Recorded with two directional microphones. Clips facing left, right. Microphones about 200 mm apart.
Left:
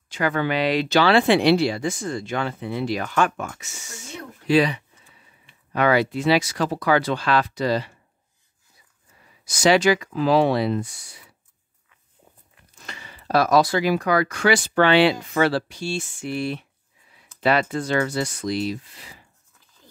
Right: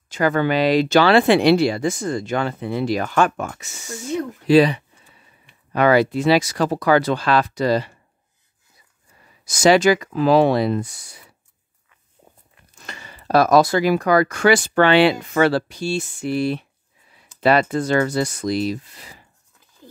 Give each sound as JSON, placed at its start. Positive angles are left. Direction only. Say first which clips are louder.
{"t": 0.1, "sound": "speech", "louder": "right 4 dB", "side_deg": -45}
{"t": 3.8, "sound": "speech", "louder": "right 14 dB", "side_deg": -60}
{"t": 4.5, "sound": "a sound", "louder": "right 5 dB", "side_deg": -35}
{"t": 5.7, "sound": "speech", "louder": "right 4 dB", "side_deg": -40}
{"t": 9.4, "sound": "speech", "louder": "right 3 dB", "side_deg": -45}
{"t": 12.8, "sound": "speech", "louder": "right 3 dB", "side_deg": -45}
{"t": 15.8, "sound": "a sound", "louder": "right 4 dB", "side_deg": -40}
{"t": 17.4, "sound": "speech", "louder": "right 4 dB", "side_deg": -40}